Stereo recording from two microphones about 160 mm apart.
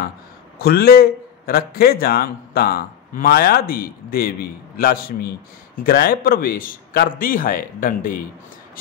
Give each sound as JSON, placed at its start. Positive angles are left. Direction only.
{"t": 0.6, "sound": "a man's voice", "side_deg": 70}